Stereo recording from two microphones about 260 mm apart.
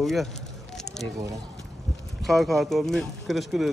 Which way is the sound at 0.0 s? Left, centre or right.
Centre.